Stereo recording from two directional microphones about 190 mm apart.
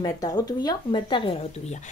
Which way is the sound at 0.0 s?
20° left (ahead or behind).